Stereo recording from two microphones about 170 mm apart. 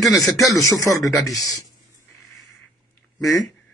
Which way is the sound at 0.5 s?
20° left (ahead or behind).